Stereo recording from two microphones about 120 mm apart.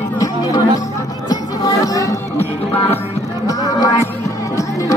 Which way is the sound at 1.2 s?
30° left (ahead or behind).